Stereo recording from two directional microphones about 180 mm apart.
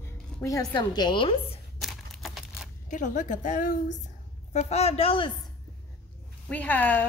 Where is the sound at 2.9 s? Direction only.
45° left (ahead or behind).